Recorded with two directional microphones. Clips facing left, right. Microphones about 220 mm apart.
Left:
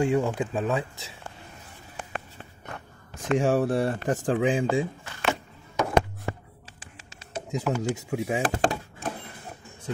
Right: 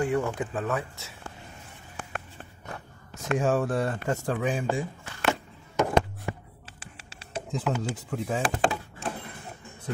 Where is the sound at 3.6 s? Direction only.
30° left (ahead or behind).